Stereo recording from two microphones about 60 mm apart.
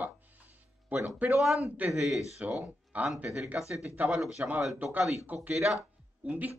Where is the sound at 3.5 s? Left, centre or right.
Right.